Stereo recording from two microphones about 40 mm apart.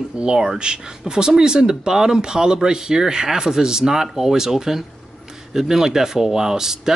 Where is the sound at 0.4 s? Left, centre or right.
Centre.